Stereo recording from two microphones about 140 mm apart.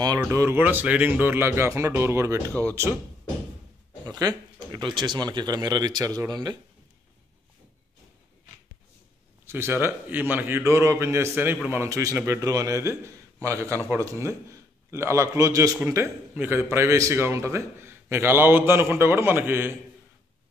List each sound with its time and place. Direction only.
0.2 s a man's voice: 20° right (ahead or behind)
4.0 s a sound: 30° right (ahead or behind)
4.9 s a man's voice: 30° right (ahead or behind)
9.5 s a man's voice: 15° right (ahead or behind)